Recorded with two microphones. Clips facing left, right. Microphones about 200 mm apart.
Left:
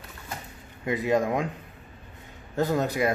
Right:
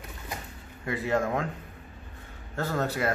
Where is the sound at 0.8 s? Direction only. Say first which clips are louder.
Left 3 dB; 15° left (ahead or behind).